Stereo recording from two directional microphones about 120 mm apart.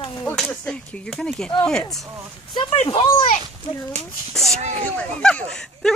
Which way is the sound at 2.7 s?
50° left (ahead or behind).